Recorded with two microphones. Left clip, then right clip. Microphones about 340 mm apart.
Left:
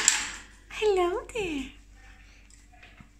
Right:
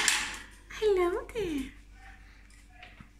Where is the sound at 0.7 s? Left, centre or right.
Centre.